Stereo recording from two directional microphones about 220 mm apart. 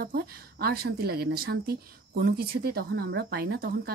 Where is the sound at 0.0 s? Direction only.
45° right (ahead or behind).